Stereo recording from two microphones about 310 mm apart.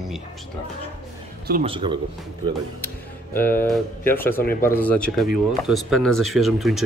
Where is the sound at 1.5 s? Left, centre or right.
Centre.